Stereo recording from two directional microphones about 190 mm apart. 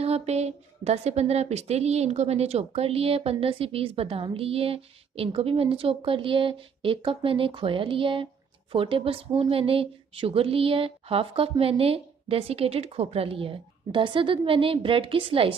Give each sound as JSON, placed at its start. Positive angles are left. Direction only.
{"t": 0.0, "sound": "a woman's voice", "side_deg": -35}